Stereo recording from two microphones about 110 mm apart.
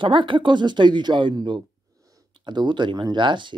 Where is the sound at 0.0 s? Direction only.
50° right (ahead or behind).